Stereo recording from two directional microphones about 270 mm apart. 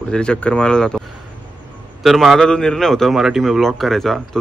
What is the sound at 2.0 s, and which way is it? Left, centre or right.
A man's voice, centre.